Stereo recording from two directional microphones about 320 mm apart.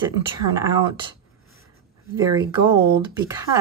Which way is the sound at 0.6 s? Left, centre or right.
Centre.